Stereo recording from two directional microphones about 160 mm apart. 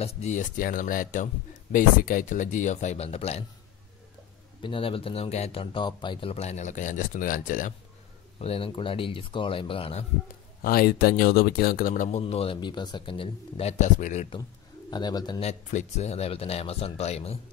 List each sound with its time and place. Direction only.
0.0 s speech: 45° left (ahead or behind)
4.6 s speech: 35° left (ahead or behind); by 7.7 s 55° left (ahead or behind)
8.4 s speech: 35° left (ahead or behind)
10.6 s speech: 70° left (ahead or behind)
12.2 s speech: 40° left (ahead or behind)
14.9 s speech: 25° left (ahead or behind)
15.4 s speech: 45° left (ahead or behind)